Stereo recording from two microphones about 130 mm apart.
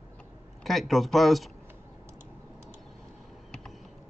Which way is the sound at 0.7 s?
Centre (ahead or behind).